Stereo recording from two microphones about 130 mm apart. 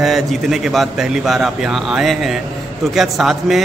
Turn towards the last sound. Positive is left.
turn(degrees=0)  # may be behind; listen again after turning